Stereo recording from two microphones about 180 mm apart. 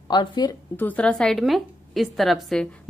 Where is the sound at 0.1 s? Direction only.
25° left (ahead or behind).